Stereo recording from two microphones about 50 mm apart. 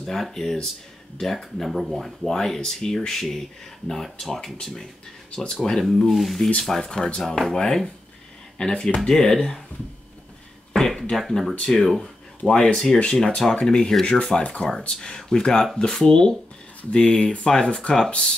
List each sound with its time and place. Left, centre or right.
0.0 s speech: centre
10.7 s a sound: centre
11.1 s speech: centre
12.4 s speech: centre
16.9 s speech: left